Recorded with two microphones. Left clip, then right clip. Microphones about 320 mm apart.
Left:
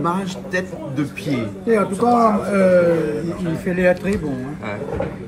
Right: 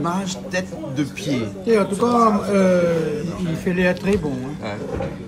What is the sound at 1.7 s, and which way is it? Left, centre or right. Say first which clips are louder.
Speech: left 1 dB; centre.